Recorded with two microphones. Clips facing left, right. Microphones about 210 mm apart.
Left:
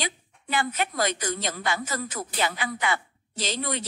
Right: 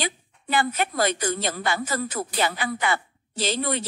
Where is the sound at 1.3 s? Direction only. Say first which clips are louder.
Right 3 dB; 55° right (ahead or behind).